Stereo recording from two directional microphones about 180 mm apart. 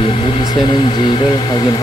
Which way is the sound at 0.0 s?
30° left (ahead or behind).